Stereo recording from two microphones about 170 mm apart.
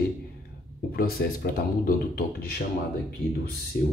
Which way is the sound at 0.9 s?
60° left (ahead or behind).